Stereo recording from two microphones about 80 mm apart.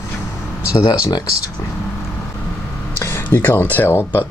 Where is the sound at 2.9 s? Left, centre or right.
Left.